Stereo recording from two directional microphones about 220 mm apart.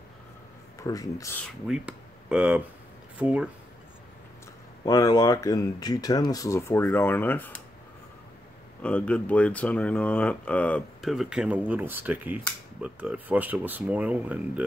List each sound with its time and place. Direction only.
0.7 s speech: 15° left (ahead or behind)
1.7 s speech: 5° right (ahead or behind)
4.8 s speech: 15° left (ahead or behind)
8.8 s speech: 5° left (ahead or behind)